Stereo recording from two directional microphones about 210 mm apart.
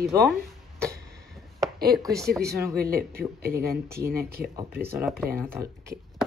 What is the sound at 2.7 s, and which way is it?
Speech, 45° right (ahead or behind).